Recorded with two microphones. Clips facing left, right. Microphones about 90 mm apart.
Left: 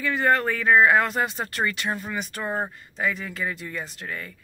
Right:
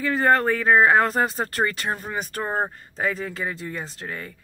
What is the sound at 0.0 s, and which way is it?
Speech, 35° right (ahead or behind).